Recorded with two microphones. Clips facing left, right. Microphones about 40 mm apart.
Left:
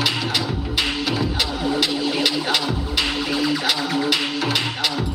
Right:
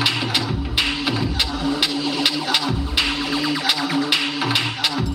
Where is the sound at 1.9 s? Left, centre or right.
Centre.